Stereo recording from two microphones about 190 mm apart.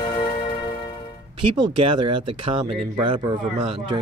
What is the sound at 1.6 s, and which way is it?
Speech, 25° right (ahead or behind).